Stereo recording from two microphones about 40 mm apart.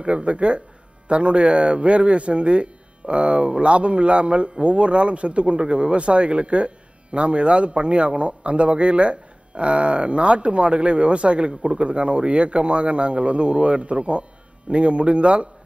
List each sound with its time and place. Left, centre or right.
0.0 s a man's voice: right